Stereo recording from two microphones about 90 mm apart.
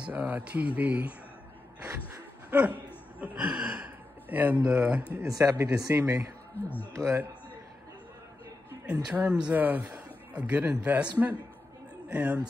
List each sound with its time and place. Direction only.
0.0 s speech: 15° right (ahead or behind)
1.9 s a sound: 30° right (ahead or behind)
3.3 s speech: 10° right (ahead or behind)
5.2 s speech: 40° right (ahead or behind)
6.6 s speech: 20° left (ahead or behind)
6.9 s speech: 35° right (ahead or behind)
8.8 s speech: 20° right (ahead or behind)
12.1 s speech: 15° right (ahead or behind)